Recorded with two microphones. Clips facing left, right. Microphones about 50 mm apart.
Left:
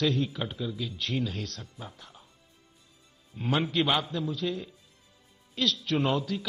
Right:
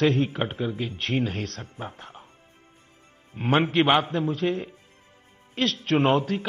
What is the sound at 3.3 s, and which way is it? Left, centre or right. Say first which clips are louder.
A man's voice: right 6 dB; right.